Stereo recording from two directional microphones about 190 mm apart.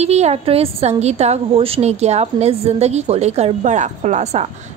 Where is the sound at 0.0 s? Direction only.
35° right (ahead or behind).